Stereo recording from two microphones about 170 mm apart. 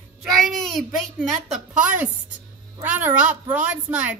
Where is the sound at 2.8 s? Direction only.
10° right (ahead or behind).